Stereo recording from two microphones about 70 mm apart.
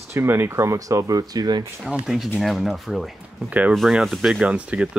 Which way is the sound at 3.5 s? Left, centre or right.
Right.